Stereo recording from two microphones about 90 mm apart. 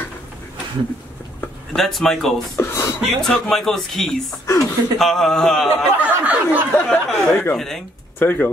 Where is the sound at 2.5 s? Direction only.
35° left (ahead or behind).